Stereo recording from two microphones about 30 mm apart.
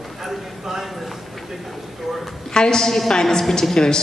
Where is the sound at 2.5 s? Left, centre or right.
Left.